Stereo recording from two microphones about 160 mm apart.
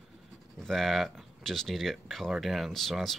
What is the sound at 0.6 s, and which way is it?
Speech, centre (ahead or behind).